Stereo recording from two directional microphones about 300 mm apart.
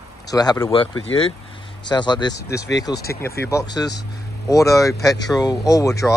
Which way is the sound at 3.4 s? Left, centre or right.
Centre.